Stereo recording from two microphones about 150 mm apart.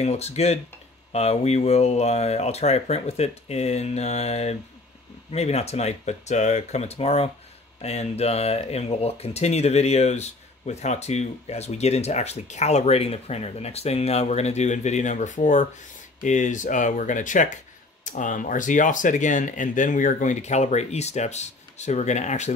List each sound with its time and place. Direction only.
0.0 s speech: 45° left (ahead or behind)